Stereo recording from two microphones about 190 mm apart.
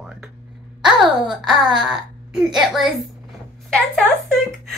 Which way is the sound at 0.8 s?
5° right (ahead or behind).